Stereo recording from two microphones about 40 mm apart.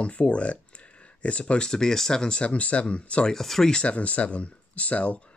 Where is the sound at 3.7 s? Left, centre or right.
Left.